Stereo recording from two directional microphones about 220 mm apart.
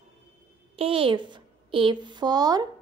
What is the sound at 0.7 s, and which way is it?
A woman's voice, 25° right (ahead or behind).